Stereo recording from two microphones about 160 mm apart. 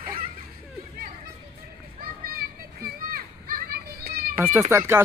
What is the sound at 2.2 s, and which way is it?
Children playing, 65° right (ahead or behind).